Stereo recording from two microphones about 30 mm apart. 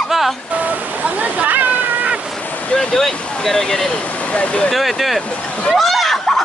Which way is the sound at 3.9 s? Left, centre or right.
Left.